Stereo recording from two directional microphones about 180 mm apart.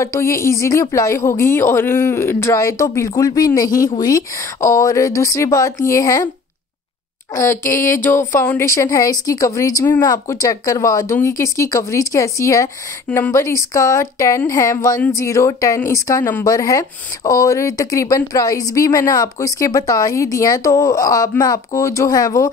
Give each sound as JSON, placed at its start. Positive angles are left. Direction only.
{"t": 0.0, "sound": "speech", "side_deg": 15}
{"t": 7.3, "sound": "speech", "side_deg": 15}